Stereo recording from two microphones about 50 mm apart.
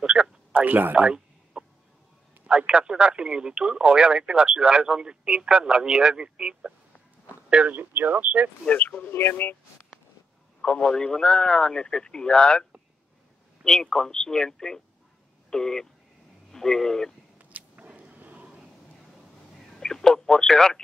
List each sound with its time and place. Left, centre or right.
0.0 s a sound: centre
0.5 s speech: right
1.0 s a sound: centre
2.4 s speech: centre
7.7 s speech: right
8.6 s speech: left
9.1 s speech: left
10.6 s a man's voice: left
13.7 s a man's voice: centre
17.4 s a sound: right
19.8 s speech: centre